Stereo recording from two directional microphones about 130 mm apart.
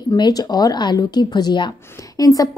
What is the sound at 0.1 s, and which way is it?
A woman's voice, 30° left (ahead or behind).